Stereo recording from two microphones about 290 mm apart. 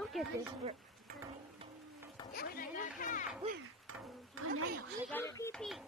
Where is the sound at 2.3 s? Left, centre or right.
Left.